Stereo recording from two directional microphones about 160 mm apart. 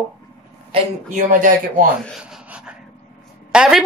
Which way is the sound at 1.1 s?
60° right (ahead or behind).